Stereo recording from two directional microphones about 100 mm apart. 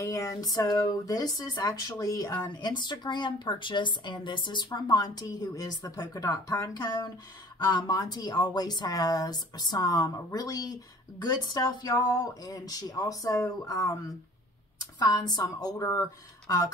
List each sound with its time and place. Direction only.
0.0 s speech: 30° left (ahead or behind)